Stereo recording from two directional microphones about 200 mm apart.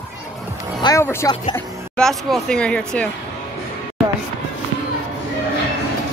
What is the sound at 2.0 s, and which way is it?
Speech, centre (ahead or behind).